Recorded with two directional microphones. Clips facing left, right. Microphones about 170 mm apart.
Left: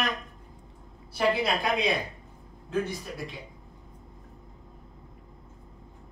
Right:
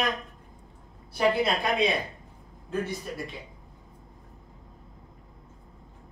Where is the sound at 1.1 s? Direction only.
Centre (ahead or behind).